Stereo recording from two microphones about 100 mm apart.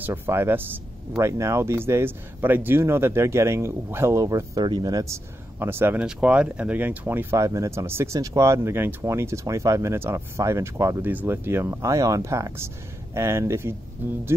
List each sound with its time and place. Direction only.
0.0 s speech: 20° right (ahead or behind)
4.6 s speech: 45° right (ahead or behind)
5.0 s speech: 25° right (ahead or behind)
6.0 s speech: 10° right (ahead or behind)